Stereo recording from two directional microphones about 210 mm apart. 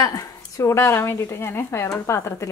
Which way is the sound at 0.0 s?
15° left (ahead or behind).